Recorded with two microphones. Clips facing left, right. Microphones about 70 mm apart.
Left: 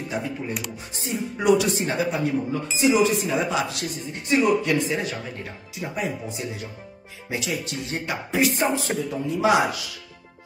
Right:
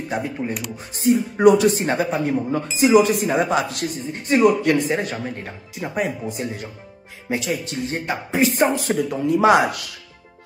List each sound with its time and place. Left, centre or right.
0.1 s speech: right
4.9 s speech: right